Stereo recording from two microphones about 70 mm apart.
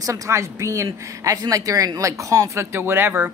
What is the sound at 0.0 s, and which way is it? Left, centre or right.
A woman's voice, right.